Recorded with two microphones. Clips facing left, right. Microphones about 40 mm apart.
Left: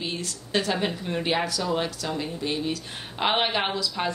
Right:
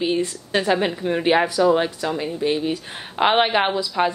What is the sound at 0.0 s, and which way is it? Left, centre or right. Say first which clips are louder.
A woman's voice: right 10 dB; right.